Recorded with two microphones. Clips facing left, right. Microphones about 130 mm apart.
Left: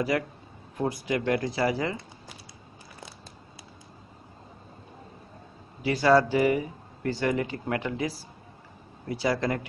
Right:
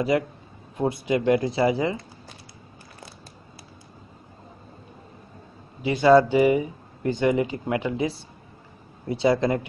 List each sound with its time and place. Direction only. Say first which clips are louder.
0.1 s speech: right 5 dB; 20° right (ahead or behind)
5.8 s speech: right 5 dB; 20° right (ahead or behind)